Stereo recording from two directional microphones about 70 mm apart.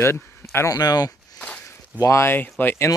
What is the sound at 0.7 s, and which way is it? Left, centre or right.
Speech, left.